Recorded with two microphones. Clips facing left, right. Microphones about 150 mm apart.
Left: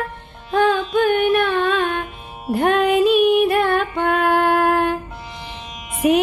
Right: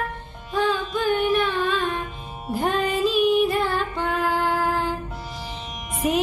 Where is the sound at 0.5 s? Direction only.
65° left (ahead or behind).